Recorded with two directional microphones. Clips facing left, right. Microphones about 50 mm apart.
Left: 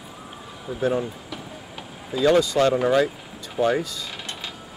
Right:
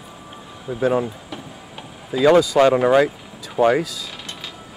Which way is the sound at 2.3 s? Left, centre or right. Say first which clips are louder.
Right 5 dB; centre.